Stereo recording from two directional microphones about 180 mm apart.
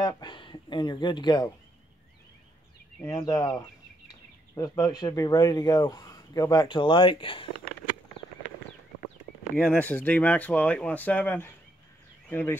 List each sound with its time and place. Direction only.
0.0 s speech: 25° left (ahead or behind)
3.2 s speech: 20° left (ahead or behind)
9.6 s speech: 10° left (ahead or behind)